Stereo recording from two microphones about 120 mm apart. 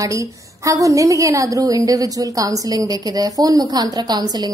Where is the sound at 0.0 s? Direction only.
25° right (ahead or behind).